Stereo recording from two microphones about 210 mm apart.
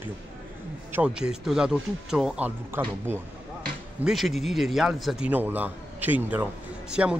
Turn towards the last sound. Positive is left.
turn(degrees=-5)  # may be behind; listen again after turning